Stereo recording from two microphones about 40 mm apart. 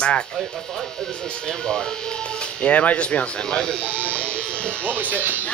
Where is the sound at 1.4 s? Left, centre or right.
Centre.